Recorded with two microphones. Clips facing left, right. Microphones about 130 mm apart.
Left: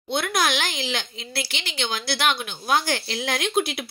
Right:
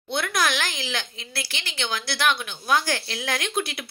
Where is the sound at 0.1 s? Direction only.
10° left (ahead or behind).